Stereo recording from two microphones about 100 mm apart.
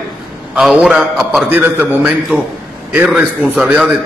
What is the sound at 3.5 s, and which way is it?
Speech, 5° right (ahead or behind).